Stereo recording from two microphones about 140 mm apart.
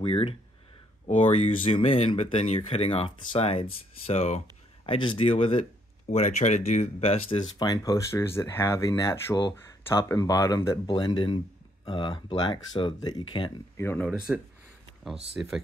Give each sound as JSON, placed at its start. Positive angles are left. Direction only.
{"t": 0.0, "sound": "speech", "side_deg": 45}
{"t": 4.8, "sound": "speech", "side_deg": 35}
{"t": 7.5, "sound": "speech", "side_deg": 30}
{"t": 13.7, "sound": "speech", "side_deg": 15}
{"t": 15.3, "sound": "speech", "side_deg": -5}